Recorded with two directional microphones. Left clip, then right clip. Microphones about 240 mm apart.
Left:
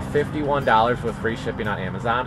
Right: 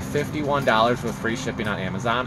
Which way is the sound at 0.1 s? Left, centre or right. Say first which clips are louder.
Left 2 dB; centre.